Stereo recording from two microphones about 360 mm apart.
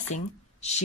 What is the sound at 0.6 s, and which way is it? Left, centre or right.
Speech, centre.